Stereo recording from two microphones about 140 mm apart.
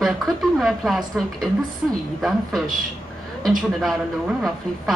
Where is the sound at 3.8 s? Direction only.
Centre (ahead or behind).